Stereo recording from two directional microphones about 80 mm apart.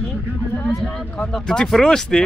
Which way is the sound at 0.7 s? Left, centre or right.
Centre.